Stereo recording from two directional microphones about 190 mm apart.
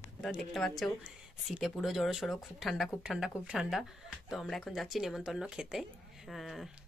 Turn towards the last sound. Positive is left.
turn(degrees=0)  # may be behind; listen again after turning